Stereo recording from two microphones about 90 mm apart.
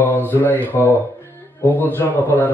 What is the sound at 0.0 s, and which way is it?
Mantra, 20° left (ahead or behind).